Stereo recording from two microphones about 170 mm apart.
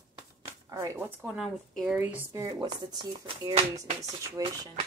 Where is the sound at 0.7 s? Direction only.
20° right (ahead or behind); by 2.0 s centre (ahead or behind).